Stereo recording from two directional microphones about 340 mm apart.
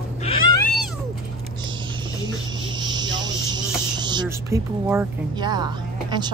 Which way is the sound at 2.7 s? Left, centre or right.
Centre.